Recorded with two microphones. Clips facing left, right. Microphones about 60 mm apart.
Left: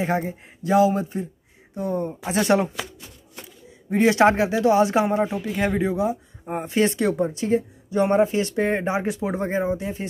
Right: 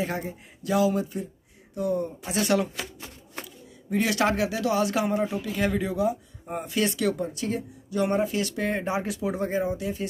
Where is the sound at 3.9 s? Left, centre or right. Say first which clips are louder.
Left 7 dB; left.